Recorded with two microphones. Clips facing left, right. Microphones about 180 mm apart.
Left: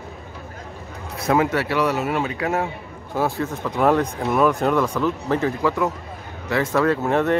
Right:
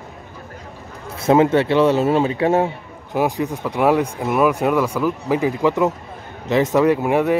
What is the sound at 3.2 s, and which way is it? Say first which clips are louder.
Speech: right 3 dB; 15° right (ahead or behind).